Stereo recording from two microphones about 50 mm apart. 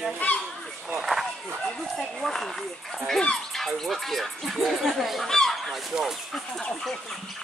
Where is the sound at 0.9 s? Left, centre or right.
Centre.